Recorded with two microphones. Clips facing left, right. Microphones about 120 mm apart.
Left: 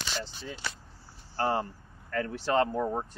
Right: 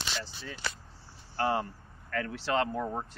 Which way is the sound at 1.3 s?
30° left (ahead or behind).